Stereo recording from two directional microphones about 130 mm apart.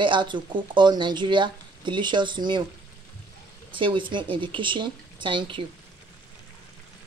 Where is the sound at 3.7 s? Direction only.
40° right (ahead or behind).